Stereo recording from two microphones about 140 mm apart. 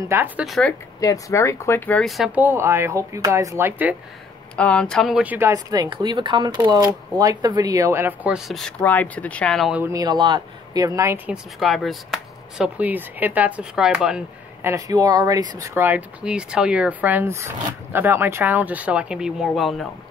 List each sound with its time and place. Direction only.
0.1 s speech: 15° right (ahead or behind)
0.5 s speech: 5° left (ahead or behind)
1.0 s speech: 20° left (ahead or behind)
2.0 s speech: centre (ahead or behind)
4.6 s speech: 5° left (ahead or behind); by 5.5 s 10° right (ahead or behind)
5.5 s speech: 25° right (ahead or behind)
8.5 s speech: centre (ahead or behind)
9.8 s speech: 25° right (ahead or behind)
11.6 s speech: centre (ahead or behind)
14.6 s speech: 20° right (ahead or behind); by 19.9 s centre (ahead or behind)